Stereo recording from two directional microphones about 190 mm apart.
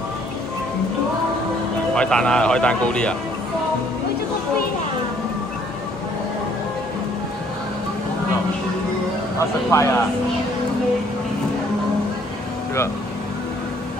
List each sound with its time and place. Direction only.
2.0 s speech: 5° left (ahead or behind)
9.7 s speech: 15° left (ahead or behind)